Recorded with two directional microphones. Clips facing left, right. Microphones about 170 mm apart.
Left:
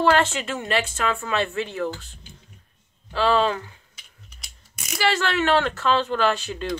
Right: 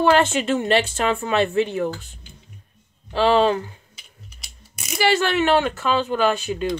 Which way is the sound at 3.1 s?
20° right (ahead or behind).